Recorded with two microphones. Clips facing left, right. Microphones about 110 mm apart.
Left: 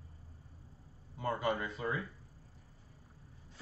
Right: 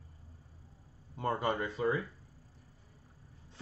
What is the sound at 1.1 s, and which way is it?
Speech, 30° right (ahead or behind).